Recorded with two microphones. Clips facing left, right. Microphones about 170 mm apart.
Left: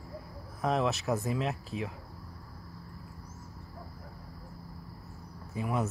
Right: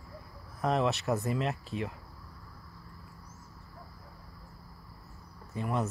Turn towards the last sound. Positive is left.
turn(degrees=5)  # may be behind; listen again after turning